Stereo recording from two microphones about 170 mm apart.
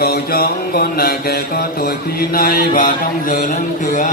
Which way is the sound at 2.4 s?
60° left (ahead or behind).